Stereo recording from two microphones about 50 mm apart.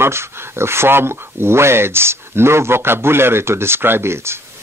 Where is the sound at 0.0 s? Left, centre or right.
Right.